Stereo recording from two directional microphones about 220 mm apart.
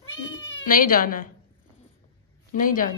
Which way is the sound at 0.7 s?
40° left (ahead or behind).